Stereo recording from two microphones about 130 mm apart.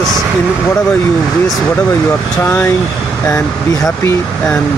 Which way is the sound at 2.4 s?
15° left (ahead or behind).